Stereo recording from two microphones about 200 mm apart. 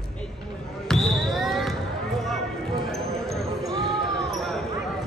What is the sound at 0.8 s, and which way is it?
Basketball bounce, centre (ahead or behind).